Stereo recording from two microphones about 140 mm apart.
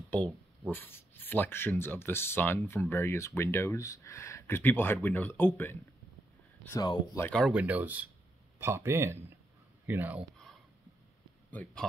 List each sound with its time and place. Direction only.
0.1 s speech: 10° left (ahead or behind)
7.2 s speech: 20° left (ahead or behind)
7.5 s speech: 10° right (ahead or behind)
11.5 s speech: 10° left (ahead or behind)